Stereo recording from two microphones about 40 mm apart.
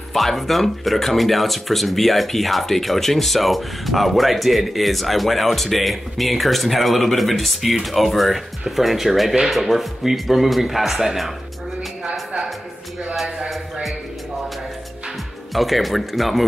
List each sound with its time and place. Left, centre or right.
0.1 s speech: centre
15.5 s speech: centre